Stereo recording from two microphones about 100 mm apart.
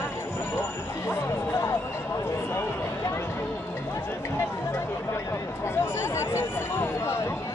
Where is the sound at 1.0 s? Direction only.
25° left (ahead or behind).